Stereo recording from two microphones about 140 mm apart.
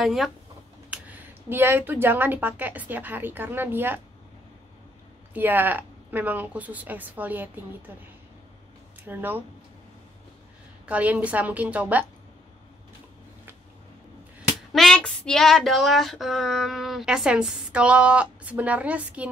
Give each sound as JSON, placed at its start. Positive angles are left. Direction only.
{"t": 0.0, "sound": "child singing", "side_deg": 0}
{"t": 0.8, "sound": "speech", "side_deg": -10}
{"t": 5.3, "sound": "speech", "side_deg": -15}
{"t": 9.0, "sound": "speech", "side_deg": -15}
{"t": 10.9, "sound": "speech", "side_deg": -10}
{"t": 14.7, "sound": "child singing", "side_deg": 5}